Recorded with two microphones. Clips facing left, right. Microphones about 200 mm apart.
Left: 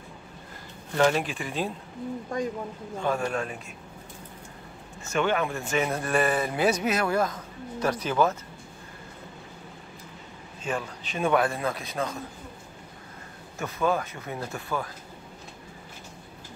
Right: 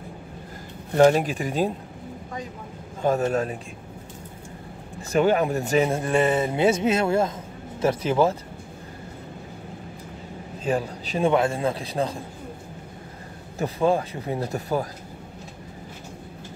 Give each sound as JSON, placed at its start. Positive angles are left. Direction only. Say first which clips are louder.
{"t": 0.9, "sound": "a man's voice", "louder": "right 6 dB", "side_deg": -40}
{"t": 3.0, "sound": "a man's voice", "louder": "right 6 dB", "side_deg": -40}
{"t": 5.0, "sound": "speech", "louder": "right 6 dB", "side_deg": -35}
{"t": 10.6, "sound": "a man's voice", "louder": "right 6 dB", "side_deg": -35}
{"t": 13.6, "sound": "a man's voice", "louder": "right 5 dB", "side_deg": -30}